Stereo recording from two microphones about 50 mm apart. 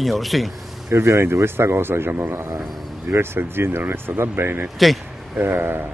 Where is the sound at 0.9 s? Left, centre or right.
Right.